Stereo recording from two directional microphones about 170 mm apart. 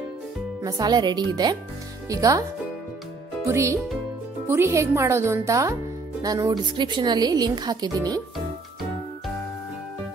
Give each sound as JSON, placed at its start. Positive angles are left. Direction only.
{"t": 0.6, "sound": "speech", "side_deg": -20}
{"t": 3.4, "sound": "speech", "side_deg": -15}